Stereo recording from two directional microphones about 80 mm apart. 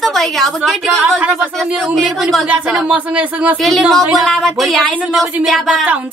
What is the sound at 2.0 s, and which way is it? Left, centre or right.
Speech, centre.